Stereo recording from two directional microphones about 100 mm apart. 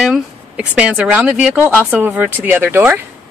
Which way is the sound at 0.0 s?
10° right (ahead or behind).